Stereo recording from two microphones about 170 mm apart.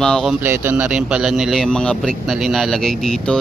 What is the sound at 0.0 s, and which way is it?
Speech, centre (ahead or behind).